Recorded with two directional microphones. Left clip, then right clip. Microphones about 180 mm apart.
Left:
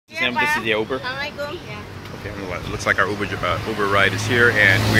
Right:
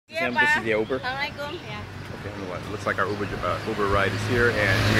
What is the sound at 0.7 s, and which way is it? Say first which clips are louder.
Speech: left 3 dB; 15° right (ahead or behind).